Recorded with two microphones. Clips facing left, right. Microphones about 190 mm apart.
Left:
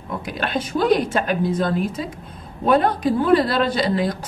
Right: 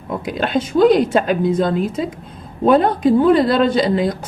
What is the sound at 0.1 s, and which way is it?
A woman's voice, 25° right (ahead or behind).